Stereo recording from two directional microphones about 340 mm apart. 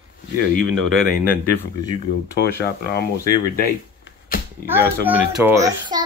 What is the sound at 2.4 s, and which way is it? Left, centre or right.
Speech, left.